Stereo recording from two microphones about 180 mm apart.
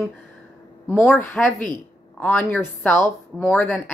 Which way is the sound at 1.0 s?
5° left (ahead or behind).